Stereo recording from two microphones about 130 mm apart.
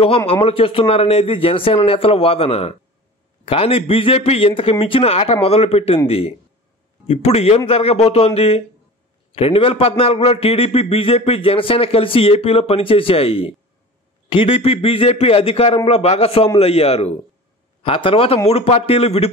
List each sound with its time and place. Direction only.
0.3 s a man's voice: 45° left (ahead or behind)